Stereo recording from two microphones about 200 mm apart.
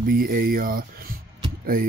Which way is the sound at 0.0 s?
45° right (ahead or behind).